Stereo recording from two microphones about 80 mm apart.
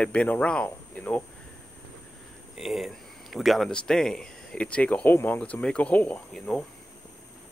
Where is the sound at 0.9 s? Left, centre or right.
Centre.